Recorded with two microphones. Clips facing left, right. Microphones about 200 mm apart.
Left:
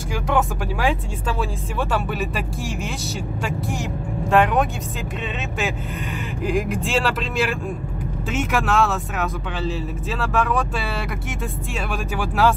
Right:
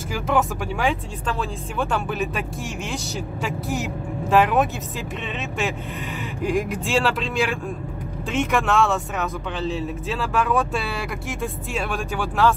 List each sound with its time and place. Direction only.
0.1 s speech: centre (ahead or behind)
6.4 s speech: centre (ahead or behind)